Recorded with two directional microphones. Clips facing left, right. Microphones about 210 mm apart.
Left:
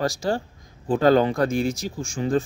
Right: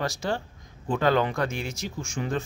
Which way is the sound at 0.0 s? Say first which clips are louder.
Left 5 dB; 35° left (ahead or behind).